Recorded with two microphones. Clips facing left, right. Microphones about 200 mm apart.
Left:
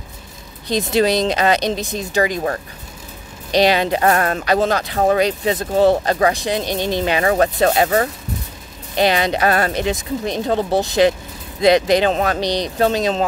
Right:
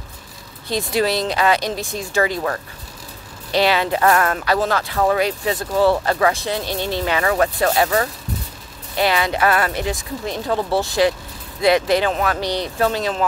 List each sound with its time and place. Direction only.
0.7 s speech: 20° left (ahead or behind)
3.5 s speech: 20° left (ahead or behind)
4.1 s speech: 30° left (ahead or behind)
4.5 s speech: 20° left (ahead or behind)
4.9 s speech: 35° left (ahead or behind)
5.2 s speech: 20° left (ahead or behind)
12.4 s speech: 15° left (ahead or behind)